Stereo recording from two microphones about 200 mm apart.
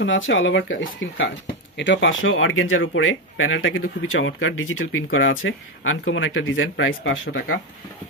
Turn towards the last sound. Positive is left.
turn(degrees=70)  # may be behind; listen again after turning